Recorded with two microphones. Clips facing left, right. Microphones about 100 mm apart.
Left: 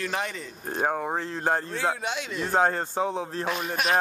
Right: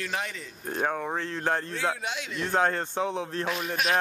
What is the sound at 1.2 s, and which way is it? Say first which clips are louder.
Speech: left 1 dB; 30° left (ahead or behind).